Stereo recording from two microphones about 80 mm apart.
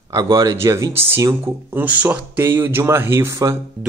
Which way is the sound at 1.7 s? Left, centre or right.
Right.